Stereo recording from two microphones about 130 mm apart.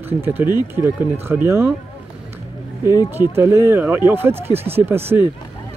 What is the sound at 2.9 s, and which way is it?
Speech, 30° left (ahead or behind).